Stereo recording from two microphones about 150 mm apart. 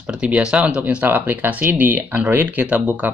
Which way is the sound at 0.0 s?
5° right (ahead or behind).